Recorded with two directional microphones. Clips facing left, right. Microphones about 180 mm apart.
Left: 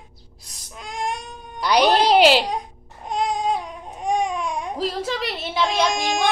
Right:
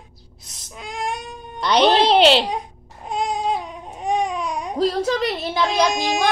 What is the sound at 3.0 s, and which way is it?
Baby cry, centre (ahead or behind).